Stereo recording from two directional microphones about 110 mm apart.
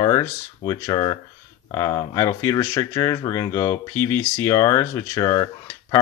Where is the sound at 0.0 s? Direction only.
35° left (ahead or behind).